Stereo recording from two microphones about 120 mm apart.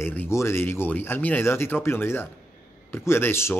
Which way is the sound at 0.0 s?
15° left (ahead or behind).